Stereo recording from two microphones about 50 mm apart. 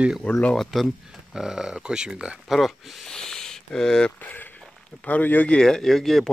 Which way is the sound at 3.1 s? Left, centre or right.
Centre.